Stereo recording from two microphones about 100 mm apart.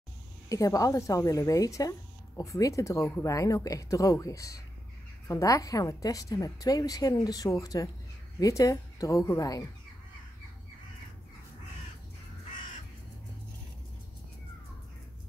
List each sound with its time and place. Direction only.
0.5 s a woman's voice: 35° left (ahead or behind)